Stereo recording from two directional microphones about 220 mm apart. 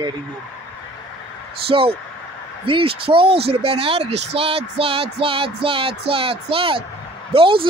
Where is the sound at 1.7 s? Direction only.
25° right (ahead or behind).